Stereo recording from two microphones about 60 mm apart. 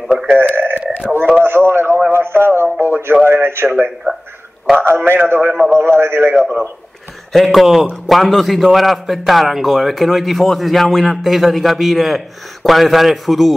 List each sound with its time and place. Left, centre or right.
0.3 s a sound: right
1.4 s radio: right
3.3 s a sound: right
3.6 s a man's voice: right
6.3 s a man's voice: centre
7.3 s a man's voice: centre